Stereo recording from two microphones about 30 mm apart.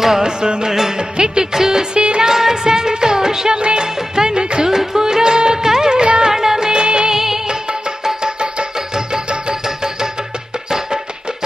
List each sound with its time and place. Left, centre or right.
0.0 s music: centre
0.4 s music of bollywood: right
2.0 s music: right
2.2 s music of bollywood: centre
2.6 s music: right
3.5 s music of bollywood: right
4.6 s music: centre
6.3 s music of bollywood: centre
6.7 s music: right
7.1 s music of bollywood: centre
8.0 s music: centre
9.3 s music: right